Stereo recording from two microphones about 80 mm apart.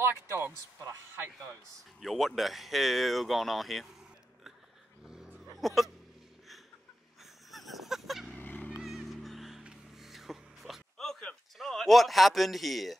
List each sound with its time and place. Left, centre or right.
0.0 s speech: right
2.0 s speech: centre
5.0 s dog: centre
5.6 s speech: centre
7.5 s a sound: centre
8.4 s honk: left
8.8 s music: centre
11.5 s speech: centre